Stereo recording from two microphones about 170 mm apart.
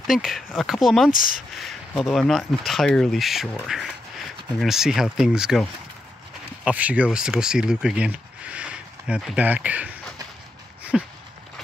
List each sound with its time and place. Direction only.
0.0 s speech: centre (ahead or behind)
1.1 s speech: 55° left (ahead or behind)
1.5 s speech: centre (ahead or behind)
10.8 s a sound: 5° right (ahead or behind)